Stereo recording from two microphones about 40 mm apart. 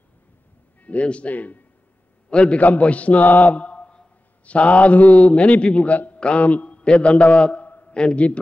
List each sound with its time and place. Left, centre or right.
0.8 s a man's voice: left
1.3 s speech: left
2.2 s a man's voice: left
2.6 s a man's voice: left
3.5 s mantra: left
4.5 s a man's voice: left
6.1 s mantra: left
6.4 s a man's voice: left
7.5 s a sound: left
7.9 s a man's voice: left